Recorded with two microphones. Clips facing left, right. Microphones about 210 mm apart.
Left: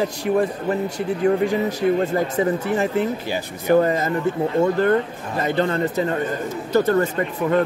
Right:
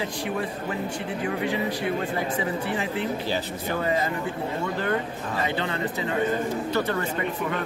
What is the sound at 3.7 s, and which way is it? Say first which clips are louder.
Speech: left 9 dB; 50° left (ahead or behind).